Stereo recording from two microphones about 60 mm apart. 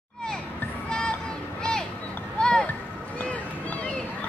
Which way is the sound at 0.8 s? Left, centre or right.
Centre.